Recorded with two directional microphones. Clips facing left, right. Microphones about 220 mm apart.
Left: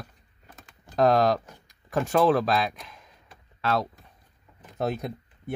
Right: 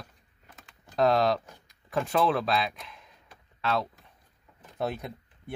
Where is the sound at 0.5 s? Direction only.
45° left (ahead or behind).